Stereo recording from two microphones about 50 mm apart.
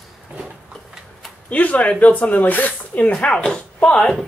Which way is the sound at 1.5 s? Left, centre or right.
Left.